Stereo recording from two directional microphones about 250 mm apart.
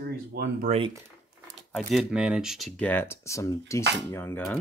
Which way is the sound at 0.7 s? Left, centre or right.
Right.